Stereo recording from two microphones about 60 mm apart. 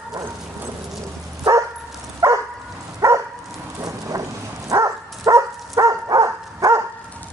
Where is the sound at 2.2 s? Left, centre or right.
Right.